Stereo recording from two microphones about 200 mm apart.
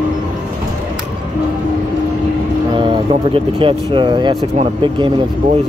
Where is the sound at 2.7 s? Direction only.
25° right (ahead or behind).